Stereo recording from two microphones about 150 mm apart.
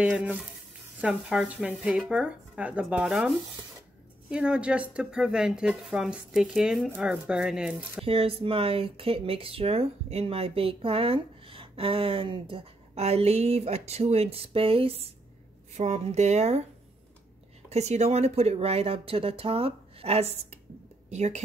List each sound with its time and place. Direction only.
0.0 s speech: 10° right (ahead or behind)
4.3 s speech: 5° right (ahead or behind)
8.0 s speech: 40° right (ahead or behind)
17.6 s speech: 45° right (ahead or behind)